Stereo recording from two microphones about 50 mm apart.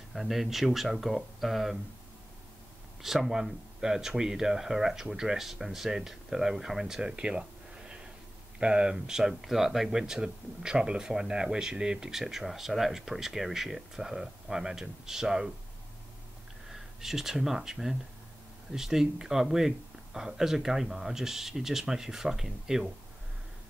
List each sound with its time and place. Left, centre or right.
0.1 s speech: centre
3.0 s speech: centre
8.9 s speech: centre
16.7 s speech: centre